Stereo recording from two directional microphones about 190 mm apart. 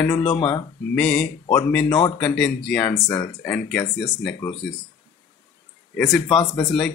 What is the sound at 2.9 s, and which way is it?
Speech, 15° left (ahead or behind).